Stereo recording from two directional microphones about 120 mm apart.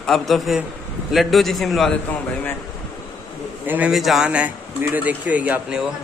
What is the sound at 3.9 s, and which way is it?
Speech, centre (ahead or behind).